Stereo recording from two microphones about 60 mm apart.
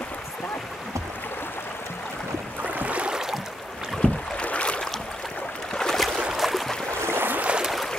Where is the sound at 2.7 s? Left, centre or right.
Right.